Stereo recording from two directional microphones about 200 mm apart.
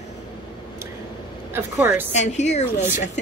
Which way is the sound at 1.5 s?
10° right (ahead or behind).